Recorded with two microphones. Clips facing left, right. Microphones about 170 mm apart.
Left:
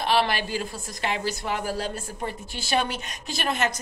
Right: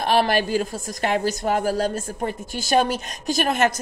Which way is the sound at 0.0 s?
45° right (ahead or behind).